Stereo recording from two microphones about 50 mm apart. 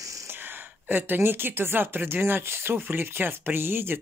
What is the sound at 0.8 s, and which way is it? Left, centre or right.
Speech, right.